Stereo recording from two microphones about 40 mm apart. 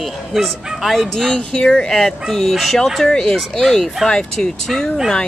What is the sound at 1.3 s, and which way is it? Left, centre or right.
Speech, centre.